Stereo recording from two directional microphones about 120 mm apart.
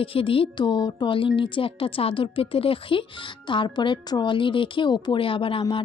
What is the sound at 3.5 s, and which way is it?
A woman's voice, 40° left (ahead or behind).